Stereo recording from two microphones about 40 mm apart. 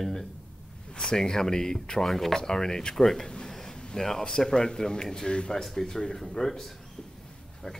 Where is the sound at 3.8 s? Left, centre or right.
Centre.